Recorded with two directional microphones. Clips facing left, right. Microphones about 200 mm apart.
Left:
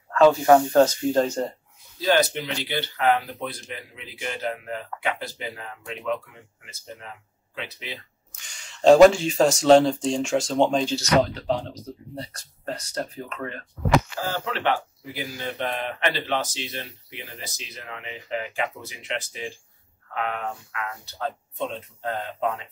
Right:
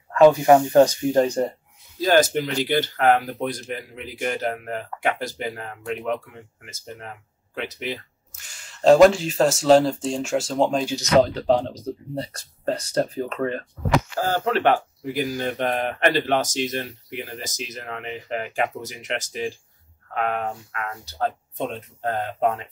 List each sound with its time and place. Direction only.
0.1 s speech: 15° right (ahead or behind)
2.0 s speech: 45° right (ahead or behind)
8.3 s speech: 5° right (ahead or behind)
11.3 s speech: 35° right (ahead or behind)
14.2 s speech: 45° right (ahead or behind)